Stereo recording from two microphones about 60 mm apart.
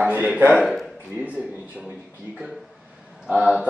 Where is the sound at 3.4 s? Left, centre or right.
Centre.